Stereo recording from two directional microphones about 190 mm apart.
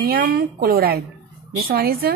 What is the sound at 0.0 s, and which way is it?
Speech, 50° right (ahead or behind).